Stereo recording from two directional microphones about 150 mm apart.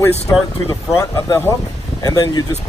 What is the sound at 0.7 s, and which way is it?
Speech, 20° left (ahead or behind).